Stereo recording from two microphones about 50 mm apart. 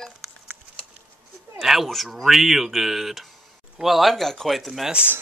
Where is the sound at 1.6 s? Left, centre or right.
Centre.